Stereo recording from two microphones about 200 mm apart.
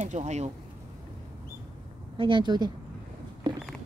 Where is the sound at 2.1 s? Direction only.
25° right (ahead or behind).